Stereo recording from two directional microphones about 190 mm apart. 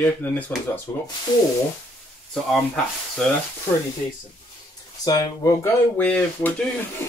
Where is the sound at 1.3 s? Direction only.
25° left (ahead or behind).